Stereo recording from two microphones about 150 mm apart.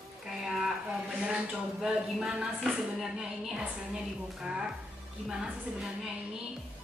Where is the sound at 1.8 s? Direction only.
5° right (ahead or behind).